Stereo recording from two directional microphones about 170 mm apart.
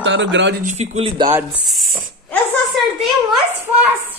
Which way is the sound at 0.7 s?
40° right (ahead or behind).